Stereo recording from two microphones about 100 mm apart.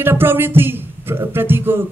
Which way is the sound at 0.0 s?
20° right (ahead or behind).